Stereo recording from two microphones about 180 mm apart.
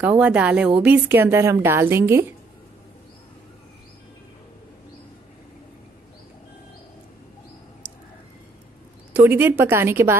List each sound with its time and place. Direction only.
0.2 s a woman's voice: 5° right (ahead or behind)
9.1 s a woman's voice: 10° right (ahead or behind)